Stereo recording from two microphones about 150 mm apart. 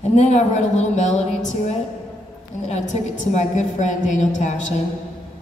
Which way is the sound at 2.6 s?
50° left (ahead or behind).